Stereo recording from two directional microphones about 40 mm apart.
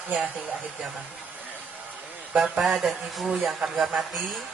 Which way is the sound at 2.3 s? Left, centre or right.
Right.